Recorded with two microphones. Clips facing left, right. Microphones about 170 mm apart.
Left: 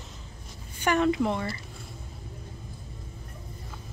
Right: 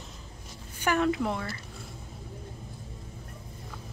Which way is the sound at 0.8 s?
5° right (ahead or behind).